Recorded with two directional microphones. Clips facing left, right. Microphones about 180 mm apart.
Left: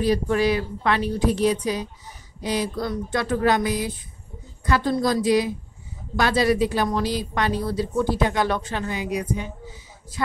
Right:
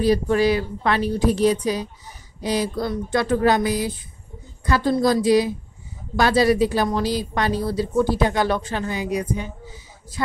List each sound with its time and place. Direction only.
0.0 s speech: 35° right (ahead or behind)